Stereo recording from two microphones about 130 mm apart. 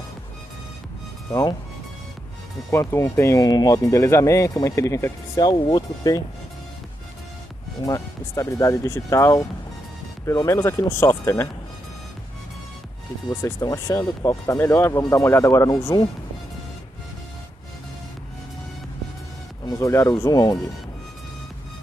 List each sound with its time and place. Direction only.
2.7 s speech: 20° left (ahead or behind)
7.8 s speech: 25° left (ahead or behind)
13.3 s speech: 25° left (ahead or behind)
19.6 s speech: 25° left (ahead or behind)